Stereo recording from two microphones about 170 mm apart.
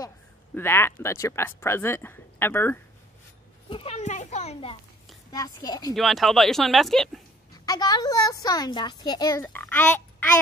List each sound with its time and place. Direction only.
0.6 s speech: 15° left (ahead or behind)
3.6 s a child's voice: 35° left (ahead or behind)
5.3 s a child's voice: 20° left (ahead or behind)
5.9 s speech: centre (ahead or behind)
7.5 s a child's voice: 20° left (ahead or behind)